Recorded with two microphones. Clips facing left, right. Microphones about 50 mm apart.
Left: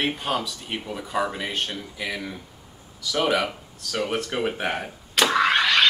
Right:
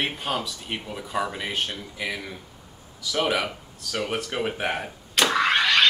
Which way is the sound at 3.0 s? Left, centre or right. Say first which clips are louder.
Left 2 dB; centre.